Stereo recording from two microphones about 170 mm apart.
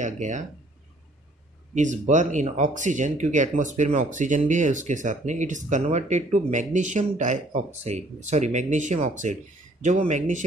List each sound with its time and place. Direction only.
0.0 s speech: 45° right (ahead or behind)
1.8 s speech: 45° right (ahead or behind)